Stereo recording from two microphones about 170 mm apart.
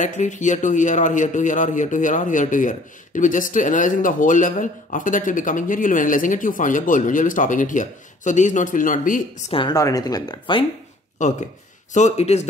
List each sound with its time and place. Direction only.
0.0 s a man's voice: 45° left (ahead or behind)
9.5 s a man's voice: 30° left (ahead or behind)
9.8 s speech: 20° left (ahead or behind)
11.1 s a man's voice: 45° left (ahead or behind)